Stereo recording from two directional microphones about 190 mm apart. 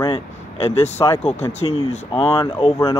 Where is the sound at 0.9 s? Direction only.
15° left (ahead or behind).